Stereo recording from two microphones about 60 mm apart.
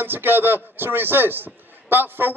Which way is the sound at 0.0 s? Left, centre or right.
Right.